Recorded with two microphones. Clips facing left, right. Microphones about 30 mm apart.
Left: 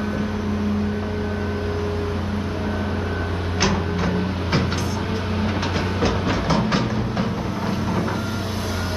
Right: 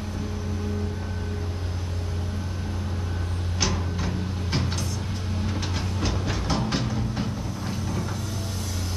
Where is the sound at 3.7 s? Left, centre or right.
Left.